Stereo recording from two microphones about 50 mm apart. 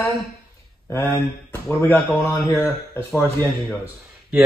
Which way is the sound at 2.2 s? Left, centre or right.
Left.